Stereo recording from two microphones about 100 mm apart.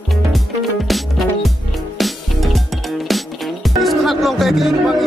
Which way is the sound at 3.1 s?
Centre (ahead or behind).